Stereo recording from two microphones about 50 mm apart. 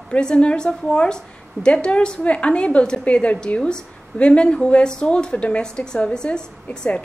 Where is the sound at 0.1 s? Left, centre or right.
Centre.